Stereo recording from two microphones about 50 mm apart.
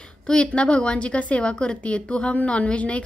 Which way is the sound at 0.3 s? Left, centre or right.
Centre.